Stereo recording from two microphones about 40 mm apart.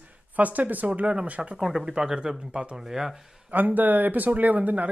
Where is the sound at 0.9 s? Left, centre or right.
Right.